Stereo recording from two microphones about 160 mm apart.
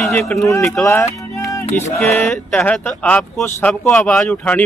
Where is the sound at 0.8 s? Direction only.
20° left (ahead or behind).